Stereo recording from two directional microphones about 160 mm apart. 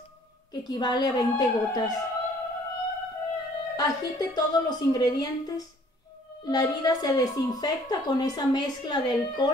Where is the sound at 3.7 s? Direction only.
25° left (ahead or behind).